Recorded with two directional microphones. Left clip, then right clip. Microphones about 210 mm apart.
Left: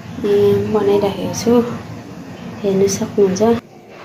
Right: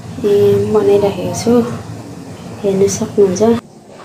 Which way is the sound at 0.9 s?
Centre (ahead or behind).